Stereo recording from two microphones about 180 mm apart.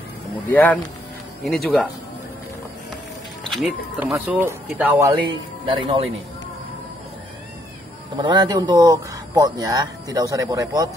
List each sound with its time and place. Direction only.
0.5 s speech: 10° left (ahead or behind)
3.4 s speech: centre (ahead or behind)
5.7 s speech: 30° right (ahead or behind)
8.2 s speech: 25° right (ahead or behind)